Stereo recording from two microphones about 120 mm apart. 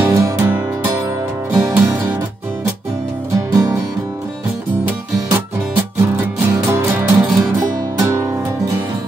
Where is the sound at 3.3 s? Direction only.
30° right (ahead or behind).